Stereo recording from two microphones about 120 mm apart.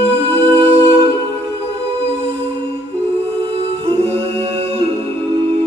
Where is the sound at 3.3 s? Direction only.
50° right (ahead or behind).